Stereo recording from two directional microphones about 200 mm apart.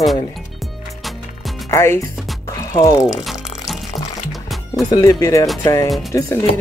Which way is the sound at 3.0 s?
Centre (ahead or behind).